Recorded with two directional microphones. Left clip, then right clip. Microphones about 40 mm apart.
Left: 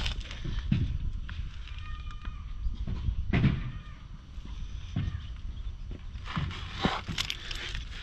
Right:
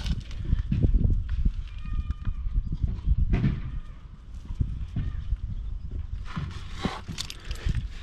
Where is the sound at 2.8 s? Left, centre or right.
Right.